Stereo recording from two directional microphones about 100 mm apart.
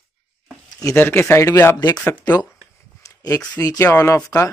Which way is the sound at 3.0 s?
35° left (ahead or behind).